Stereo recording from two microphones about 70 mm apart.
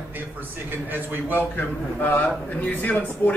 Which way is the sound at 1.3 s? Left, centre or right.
Left.